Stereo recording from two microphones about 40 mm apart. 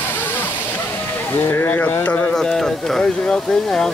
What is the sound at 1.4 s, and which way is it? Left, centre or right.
Speech, left.